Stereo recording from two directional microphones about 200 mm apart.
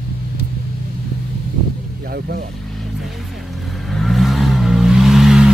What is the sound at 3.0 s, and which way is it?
Vehicle, centre (ahead or behind).